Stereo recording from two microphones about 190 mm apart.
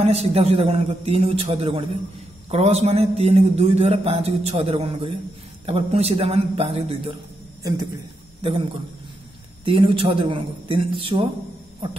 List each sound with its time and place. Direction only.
0.0 s speech: 35° right (ahead or behind)
8.4 s a man's voice: 30° right (ahead or behind)
9.7 s a man's voice: 25° right (ahead or behind)